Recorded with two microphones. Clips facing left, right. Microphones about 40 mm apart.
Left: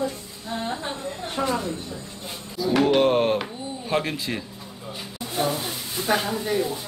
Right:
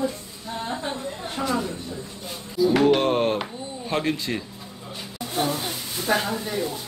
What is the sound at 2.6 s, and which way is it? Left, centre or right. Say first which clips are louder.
Speech: right 1 dB; centre.